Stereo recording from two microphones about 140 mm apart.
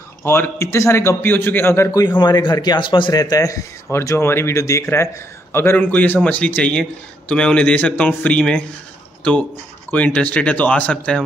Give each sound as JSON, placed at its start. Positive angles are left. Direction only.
{"t": 0.2, "sound": "a man's voice", "side_deg": 20}
{"t": 1.9, "sound": "a man's voice", "side_deg": 30}